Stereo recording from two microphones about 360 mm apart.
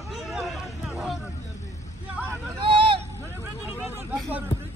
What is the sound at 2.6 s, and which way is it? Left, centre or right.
Vehicle, centre.